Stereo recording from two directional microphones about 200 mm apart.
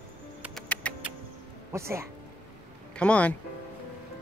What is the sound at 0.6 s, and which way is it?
Music, 5° left (ahead or behind).